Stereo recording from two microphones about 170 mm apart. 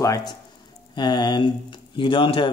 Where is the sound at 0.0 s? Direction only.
20° left (ahead or behind).